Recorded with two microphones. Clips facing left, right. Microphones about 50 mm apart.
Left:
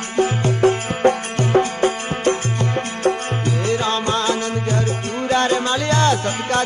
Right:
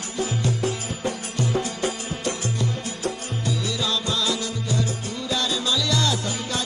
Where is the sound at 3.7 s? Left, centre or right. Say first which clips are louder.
Left 9 dB; left.